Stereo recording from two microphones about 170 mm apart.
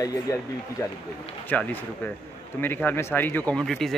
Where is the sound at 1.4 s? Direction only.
10° left (ahead or behind).